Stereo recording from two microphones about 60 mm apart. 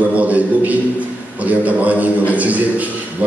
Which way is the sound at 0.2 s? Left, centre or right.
Right.